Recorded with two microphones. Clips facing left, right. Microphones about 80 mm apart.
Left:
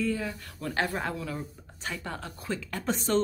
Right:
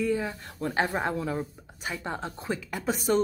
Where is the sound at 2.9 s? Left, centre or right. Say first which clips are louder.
Right 3 dB; centre.